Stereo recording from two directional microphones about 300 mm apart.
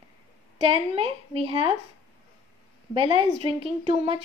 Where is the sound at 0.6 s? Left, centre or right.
Centre.